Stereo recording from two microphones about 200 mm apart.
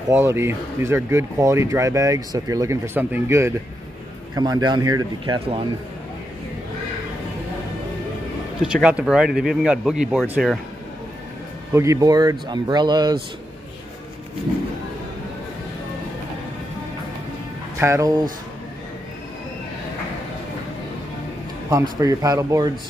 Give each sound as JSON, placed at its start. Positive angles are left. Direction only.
{"t": 0.1, "sound": "speech", "side_deg": -10}
{"t": 8.6, "sound": "speech", "side_deg": -5}
{"t": 11.7, "sound": "speech", "side_deg": -15}
{"t": 17.7, "sound": "speech", "side_deg": -15}
{"t": 21.6, "sound": "speech", "side_deg": -15}